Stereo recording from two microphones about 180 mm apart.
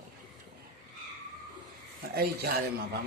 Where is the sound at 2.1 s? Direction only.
60° right (ahead or behind).